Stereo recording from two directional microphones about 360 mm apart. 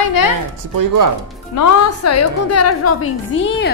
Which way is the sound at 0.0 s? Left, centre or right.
Left.